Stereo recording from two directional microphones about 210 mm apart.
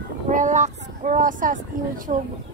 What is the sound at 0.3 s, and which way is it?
Speech, 35° right (ahead or behind).